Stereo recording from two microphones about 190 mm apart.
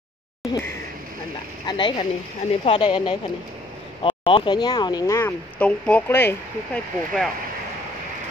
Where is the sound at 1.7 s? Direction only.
25° left (ahead or behind).